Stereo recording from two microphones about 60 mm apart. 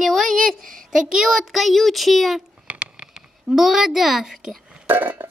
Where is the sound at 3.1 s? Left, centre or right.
Centre.